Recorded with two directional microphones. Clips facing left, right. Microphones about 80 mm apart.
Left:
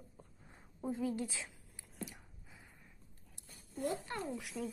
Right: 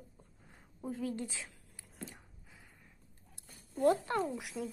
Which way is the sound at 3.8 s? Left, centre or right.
Right.